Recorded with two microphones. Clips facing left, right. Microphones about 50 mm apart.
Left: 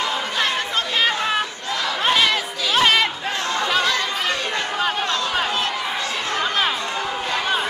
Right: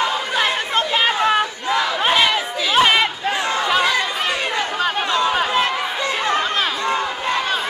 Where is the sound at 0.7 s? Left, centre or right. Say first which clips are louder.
Right 4 dB; right.